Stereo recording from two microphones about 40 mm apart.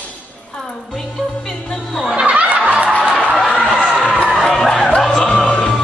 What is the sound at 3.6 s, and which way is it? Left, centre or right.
Crowd, centre.